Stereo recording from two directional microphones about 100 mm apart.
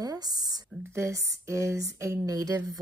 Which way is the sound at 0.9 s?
30° right (ahead or behind).